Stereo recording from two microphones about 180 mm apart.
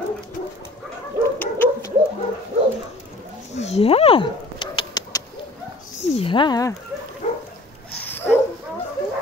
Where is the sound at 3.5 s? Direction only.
35° left (ahead or behind); by 5.3 s 20° left (ahead or behind).